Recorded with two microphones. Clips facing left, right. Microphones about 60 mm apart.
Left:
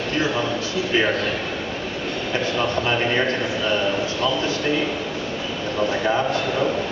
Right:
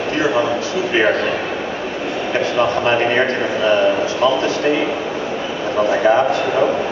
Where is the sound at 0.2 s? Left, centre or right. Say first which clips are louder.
Right 7 dB; centre.